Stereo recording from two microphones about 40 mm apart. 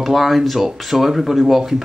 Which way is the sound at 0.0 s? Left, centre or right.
Centre.